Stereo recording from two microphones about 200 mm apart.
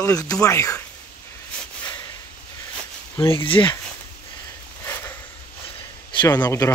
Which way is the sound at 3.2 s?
25° left (ahead or behind).